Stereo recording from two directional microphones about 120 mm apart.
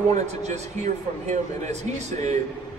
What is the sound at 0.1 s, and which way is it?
A man's voice, 70° right (ahead or behind).